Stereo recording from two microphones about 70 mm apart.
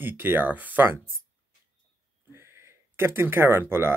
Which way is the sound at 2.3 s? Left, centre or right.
Right.